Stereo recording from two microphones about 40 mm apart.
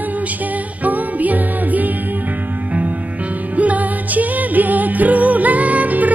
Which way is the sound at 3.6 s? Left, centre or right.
Right.